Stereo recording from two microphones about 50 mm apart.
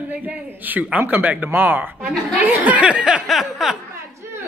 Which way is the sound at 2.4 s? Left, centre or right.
Right.